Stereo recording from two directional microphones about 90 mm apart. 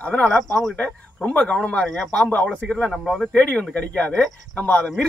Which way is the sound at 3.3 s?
15° left (ahead or behind).